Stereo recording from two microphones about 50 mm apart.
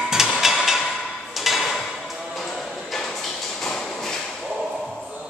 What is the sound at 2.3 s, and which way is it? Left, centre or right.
Music, centre.